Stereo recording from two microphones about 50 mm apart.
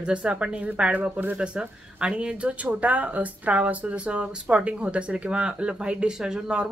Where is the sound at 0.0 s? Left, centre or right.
Right.